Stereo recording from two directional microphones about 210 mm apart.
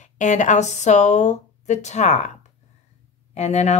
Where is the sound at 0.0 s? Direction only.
35° left (ahead or behind).